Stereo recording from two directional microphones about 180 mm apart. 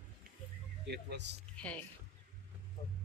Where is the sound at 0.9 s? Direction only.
70° right (ahead or behind).